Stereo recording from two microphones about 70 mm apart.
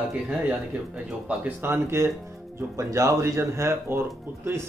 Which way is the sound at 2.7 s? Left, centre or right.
Right.